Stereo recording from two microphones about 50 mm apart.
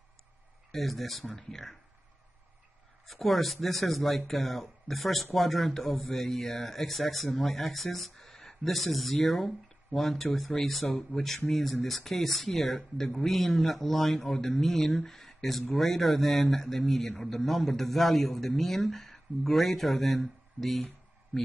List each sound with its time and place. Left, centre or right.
0.7 s a man's voice: centre
3.1 s a man's voice: centre